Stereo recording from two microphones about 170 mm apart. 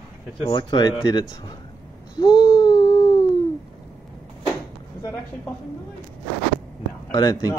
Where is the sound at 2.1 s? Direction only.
25° left (ahead or behind).